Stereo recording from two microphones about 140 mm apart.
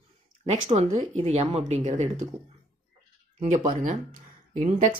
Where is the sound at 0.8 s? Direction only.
55° right (ahead or behind).